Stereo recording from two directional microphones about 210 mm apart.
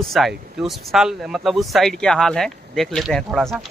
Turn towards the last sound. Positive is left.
turn(degrees=0)  # may be behind; listen again after turning